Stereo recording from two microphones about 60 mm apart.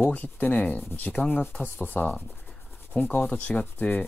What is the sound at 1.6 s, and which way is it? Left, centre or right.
Sanding, left.